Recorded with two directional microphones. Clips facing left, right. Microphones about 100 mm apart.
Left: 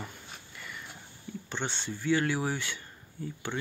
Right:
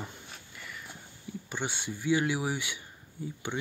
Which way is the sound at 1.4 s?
10° right (ahead or behind).